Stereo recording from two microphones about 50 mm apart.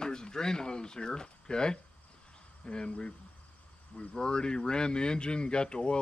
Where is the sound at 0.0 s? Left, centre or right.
Centre.